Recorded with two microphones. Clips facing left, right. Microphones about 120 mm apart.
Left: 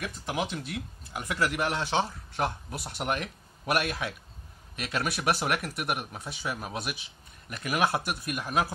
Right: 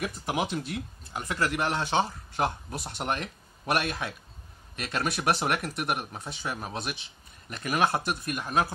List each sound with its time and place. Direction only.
0.0 s speech: 10° right (ahead or behind); by 8.7 s 10° left (ahead or behind)